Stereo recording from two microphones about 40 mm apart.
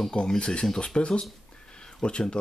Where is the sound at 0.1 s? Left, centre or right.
Left.